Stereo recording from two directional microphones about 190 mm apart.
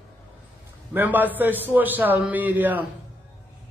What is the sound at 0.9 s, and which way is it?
A man's voice, 10° right (ahead or behind).